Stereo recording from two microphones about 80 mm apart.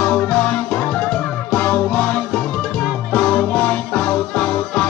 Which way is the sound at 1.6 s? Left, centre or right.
Left.